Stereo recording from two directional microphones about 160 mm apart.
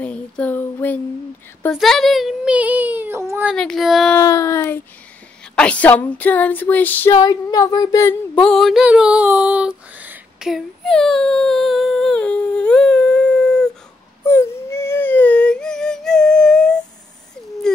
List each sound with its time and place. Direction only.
0.0 s female singing: 10° left (ahead or behind)
1.8 s child singing: centre (ahead or behind); by 3.4 s 15° right (ahead or behind)
3.5 s female singing: 5° left (ahead or behind)
4.2 s speech: 20° left (ahead or behind)
5.6 s female singing: 10° left (ahead or behind)
7.2 s speech: 25° left (ahead or behind)
8.4 s a sound: 5° left (ahead or behind)